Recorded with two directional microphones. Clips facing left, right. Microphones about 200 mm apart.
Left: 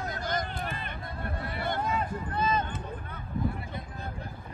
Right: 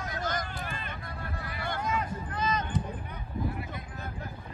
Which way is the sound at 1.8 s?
30° left (ahead or behind).